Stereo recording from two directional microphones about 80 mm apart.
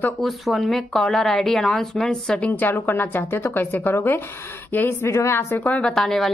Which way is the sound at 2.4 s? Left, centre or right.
Left.